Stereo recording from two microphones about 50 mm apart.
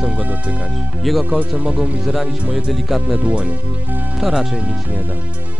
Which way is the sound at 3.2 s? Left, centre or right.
Right.